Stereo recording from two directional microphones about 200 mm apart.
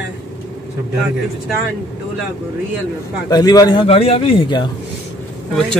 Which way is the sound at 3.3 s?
20° left (ahead or behind).